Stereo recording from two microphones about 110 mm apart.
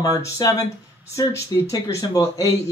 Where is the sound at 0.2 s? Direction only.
30° left (ahead or behind).